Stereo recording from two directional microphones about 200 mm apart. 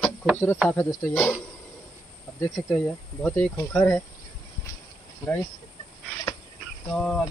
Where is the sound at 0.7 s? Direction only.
15° left (ahead or behind).